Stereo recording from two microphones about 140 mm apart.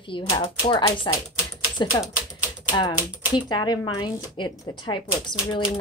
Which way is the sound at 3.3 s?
30° left (ahead or behind).